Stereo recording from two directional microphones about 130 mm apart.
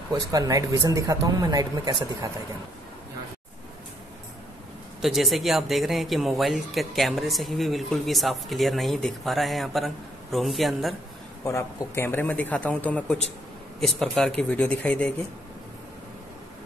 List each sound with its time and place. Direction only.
0.1 s speech: 25° right (ahead or behind)
5.0 s speech: centre (ahead or behind)
11.4 s a man's voice: 25° left (ahead or behind)